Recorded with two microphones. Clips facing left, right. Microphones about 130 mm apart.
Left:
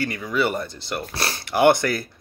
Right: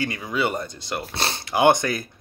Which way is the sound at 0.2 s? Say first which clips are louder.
Left 4 dB; 20° right (ahead or behind).